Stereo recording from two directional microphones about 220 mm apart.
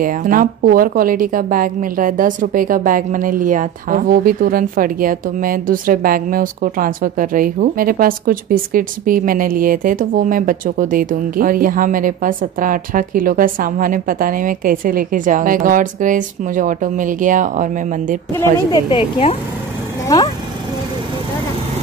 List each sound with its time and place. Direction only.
0.0 s a woman's voice: 40° right (ahead or behind)
18.3 s a woman's voice: 20° left (ahead or behind)